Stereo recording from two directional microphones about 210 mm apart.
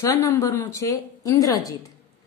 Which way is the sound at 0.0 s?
15° left (ahead or behind).